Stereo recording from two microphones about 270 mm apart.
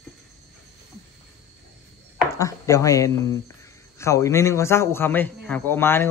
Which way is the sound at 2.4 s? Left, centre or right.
Centre.